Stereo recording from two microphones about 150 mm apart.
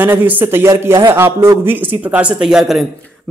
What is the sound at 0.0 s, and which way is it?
A man's voice, 15° right (ahead or behind).